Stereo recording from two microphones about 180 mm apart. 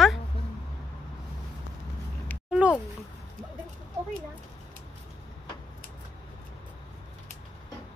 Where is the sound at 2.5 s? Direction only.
5° right (ahead or behind).